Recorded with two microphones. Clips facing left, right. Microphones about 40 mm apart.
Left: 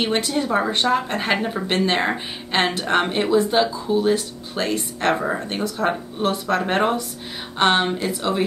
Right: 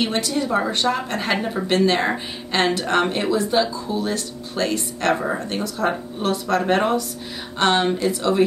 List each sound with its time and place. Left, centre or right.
0.1 s speech: left
5.1 s speech: centre
5.4 s speech: left